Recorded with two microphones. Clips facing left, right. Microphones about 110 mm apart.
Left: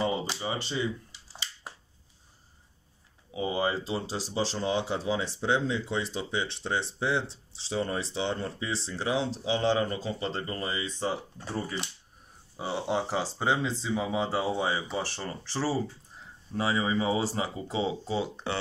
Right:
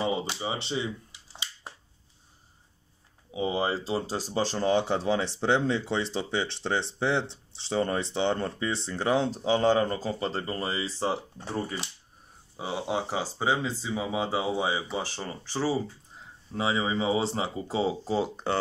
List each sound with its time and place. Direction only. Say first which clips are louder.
0.4 s speech: even; 20° right (ahead or behind)
3.3 s speech: right 1 dB; 30° right (ahead or behind)
12.5 s speech: left 1 dB; 10° right (ahead or behind); by 18.6 s 45° right (ahead or behind)